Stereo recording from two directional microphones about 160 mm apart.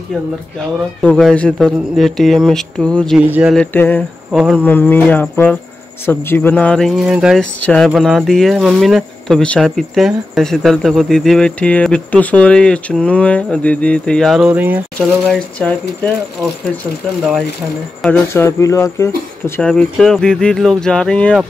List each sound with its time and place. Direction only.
1.0 s speech: 5° left (ahead or behind)
3.2 s speech: 10° right (ahead or behind)
3.5 s speech: 10° left (ahead or behind)
4.3 s speech: centre (ahead or behind)
4.6 s speech: 10° left (ahead or behind); by 14.8 s 10° right (ahead or behind)
15.0 s speech: 5° left (ahead or behind)
18.3 s speech: 20° left (ahead or behind)
19.7 s speech: 5° left (ahead or behind)